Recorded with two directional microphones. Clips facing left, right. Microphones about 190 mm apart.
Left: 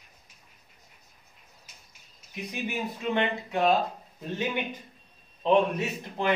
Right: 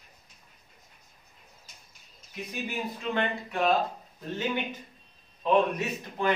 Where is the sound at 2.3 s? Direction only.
20° left (ahead or behind).